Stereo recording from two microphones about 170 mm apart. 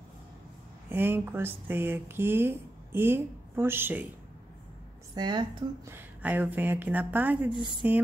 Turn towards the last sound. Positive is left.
turn(degrees=-25)  # may be behind; listen again after turning